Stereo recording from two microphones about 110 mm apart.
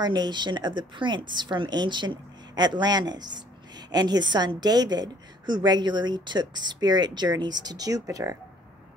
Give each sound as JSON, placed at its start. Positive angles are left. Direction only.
{"t": 0.0, "sound": "a woman's voice", "side_deg": -40}